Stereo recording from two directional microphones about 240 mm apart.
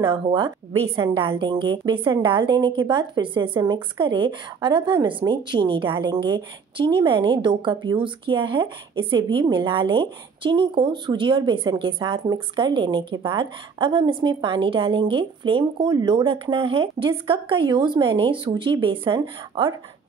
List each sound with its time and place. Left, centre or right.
0.0 s a woman's voice: centre